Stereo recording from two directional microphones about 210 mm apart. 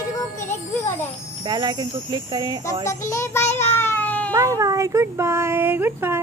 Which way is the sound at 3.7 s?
10° left (ahead or behind).